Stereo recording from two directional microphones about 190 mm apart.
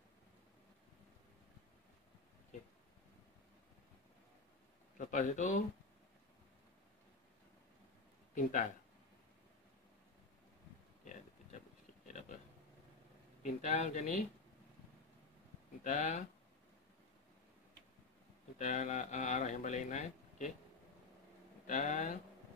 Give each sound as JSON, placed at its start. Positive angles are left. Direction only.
{"t": 4.9, "sound": "speech", "side_deg": 40}
{"t": 8.4, "sound": "speech", "side_deg": 45}
{"t": 13.4, "sound": "speech", "side_deg": 40}
{"t": 15.8, "sound": "speech", "side_deg": 40}
{"t": 18.6, "sound": "speech", "side_deg": 40}
{"t": 21.6, "sound": "speech", "side_deg": 40}